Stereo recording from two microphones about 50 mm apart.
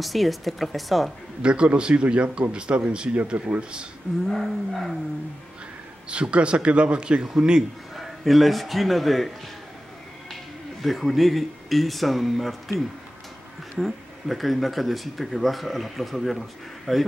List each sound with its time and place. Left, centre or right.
0.0 s speech: centre
1.4 s a man's voice: right
4.3 s speech: centre
6.0 s a man's voice: right
7.9 s a man's voice: centre
10.8 s speech: centre
13.7 s speech: centre